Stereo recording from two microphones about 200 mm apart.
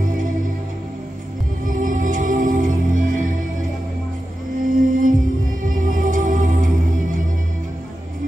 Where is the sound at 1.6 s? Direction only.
40° right (ahead or behind).